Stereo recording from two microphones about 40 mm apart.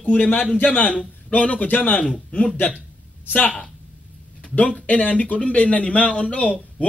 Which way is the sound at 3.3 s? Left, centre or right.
Left.